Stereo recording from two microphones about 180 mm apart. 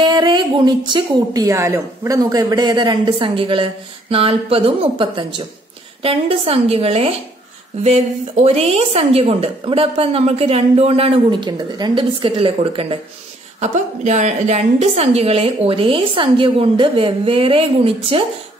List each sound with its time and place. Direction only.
0.0 s a woman's voice: 25° right (ahead or behind)